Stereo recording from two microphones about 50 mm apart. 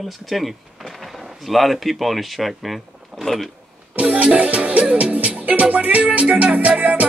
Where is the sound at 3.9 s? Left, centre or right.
Right.